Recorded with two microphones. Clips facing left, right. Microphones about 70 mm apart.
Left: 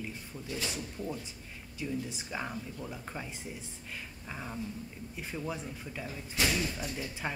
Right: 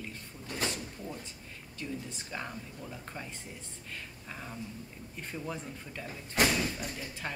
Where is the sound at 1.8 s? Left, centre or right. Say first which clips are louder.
Left 3 dB; centre.